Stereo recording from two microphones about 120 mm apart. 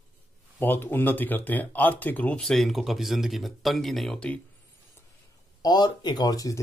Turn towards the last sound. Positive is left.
turn(degrees=30)  # may be behind; listen again after turning